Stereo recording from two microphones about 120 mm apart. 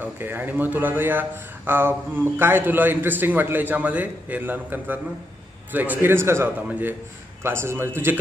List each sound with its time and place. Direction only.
0.0 s a man's voice: 15° right (ahead or behind)